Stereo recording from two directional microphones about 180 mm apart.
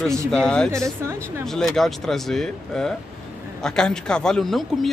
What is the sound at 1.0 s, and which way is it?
Speech, 15° right (ahead or behind).